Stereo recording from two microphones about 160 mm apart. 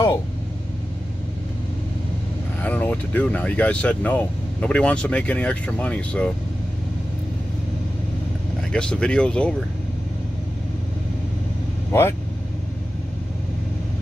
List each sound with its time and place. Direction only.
2.6 s speech: 10° left (ahead or behind)
8.7 s speech: 5° left (ahead or behind)
11.9 s speech: 15° left (ahead or behind)